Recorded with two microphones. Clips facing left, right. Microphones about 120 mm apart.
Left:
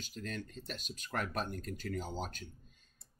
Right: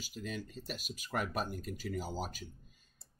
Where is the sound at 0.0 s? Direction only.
5° right (ahead or behind).